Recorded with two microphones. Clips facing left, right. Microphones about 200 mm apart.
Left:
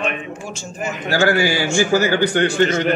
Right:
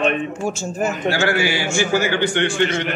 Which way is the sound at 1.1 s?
40° left (ahead or behind).